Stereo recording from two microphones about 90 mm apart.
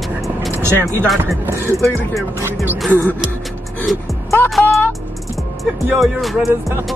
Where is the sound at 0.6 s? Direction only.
30° right (ahead or behind).